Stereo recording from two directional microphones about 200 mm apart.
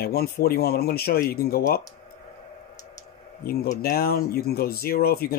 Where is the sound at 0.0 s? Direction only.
50° left (ahead or behind).